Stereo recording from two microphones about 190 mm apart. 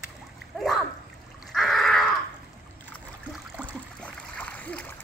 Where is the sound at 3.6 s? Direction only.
10° right (ahead or behind).